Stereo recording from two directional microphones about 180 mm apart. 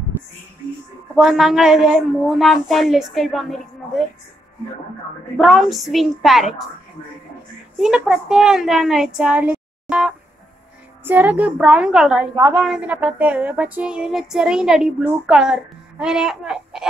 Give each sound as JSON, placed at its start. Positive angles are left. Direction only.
{"t": 1.1, "sound": "female singing", "side_deg": 0}
{"t": 5.4, "sound": "female singing", "side_deg": 0}
{"t": 7.8, "sound": "female singing", "side_deg": -5}
{"t": 11.1, "sound": "a woman's voice", "side_deg": -10}
{"t": 12.4, "sound": "a woman's voice", "side_deg": -20}
{"t": 12.6, "sound": "female singing", "side_deg": -5}